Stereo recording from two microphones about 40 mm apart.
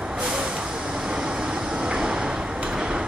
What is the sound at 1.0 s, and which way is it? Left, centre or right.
Vehicle, centre.